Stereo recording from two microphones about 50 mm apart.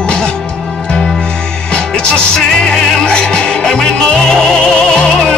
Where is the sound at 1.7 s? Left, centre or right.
Centre.